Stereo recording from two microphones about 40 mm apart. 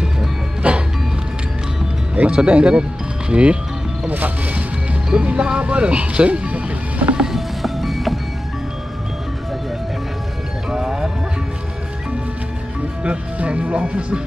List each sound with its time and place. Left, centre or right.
0.6 s music: right
2.2 s speech: right
4.1 s music: right
5.1 s speech: right
5.6 s music: right
7.3 s music: centre
10.7 s music: centre
13.0 s music: right
13.8 s speech: right